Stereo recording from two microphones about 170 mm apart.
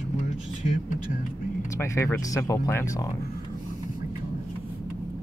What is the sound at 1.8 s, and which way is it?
Speech, 15° left (ahead or behind).